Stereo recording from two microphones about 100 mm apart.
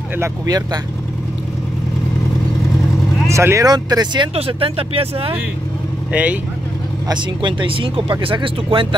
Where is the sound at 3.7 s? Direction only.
45° right (ahead or behind).